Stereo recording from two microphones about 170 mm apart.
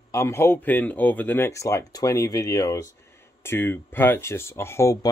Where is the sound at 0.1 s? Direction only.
15° left (ahead or behind).